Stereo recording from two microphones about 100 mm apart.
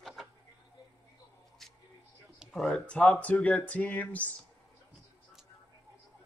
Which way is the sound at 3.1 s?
15° left (ahead or behind).